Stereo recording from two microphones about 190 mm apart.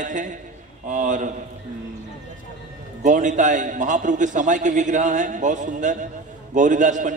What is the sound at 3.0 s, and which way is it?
A man's voice, 40° right (ahead or behind).